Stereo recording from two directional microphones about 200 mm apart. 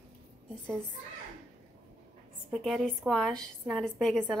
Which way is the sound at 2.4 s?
Centre (ahead or behind).